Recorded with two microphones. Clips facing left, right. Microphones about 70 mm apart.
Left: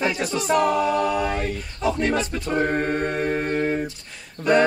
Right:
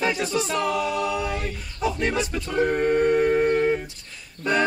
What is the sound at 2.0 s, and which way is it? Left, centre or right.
A capella, centre.